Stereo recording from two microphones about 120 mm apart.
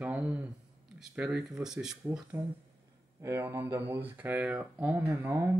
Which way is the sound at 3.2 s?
20° right (ahead or behind).